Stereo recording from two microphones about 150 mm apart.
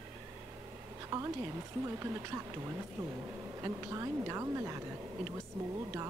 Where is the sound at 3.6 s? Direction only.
20° right (ahead or behind).